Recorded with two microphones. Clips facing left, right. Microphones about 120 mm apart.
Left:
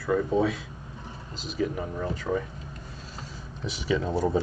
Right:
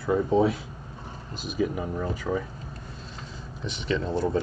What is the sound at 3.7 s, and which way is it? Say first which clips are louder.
Speech: left 1 dB; 10° left (ahead or behind).